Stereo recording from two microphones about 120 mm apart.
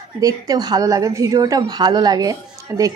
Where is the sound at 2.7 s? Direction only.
20° right (ahead or behind).